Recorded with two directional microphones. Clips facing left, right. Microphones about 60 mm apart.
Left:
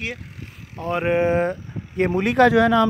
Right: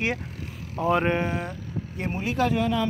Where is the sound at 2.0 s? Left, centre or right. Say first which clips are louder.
Left 10 dB; left.